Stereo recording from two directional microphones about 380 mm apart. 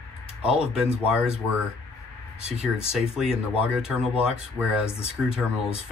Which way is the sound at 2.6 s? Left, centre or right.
Centre.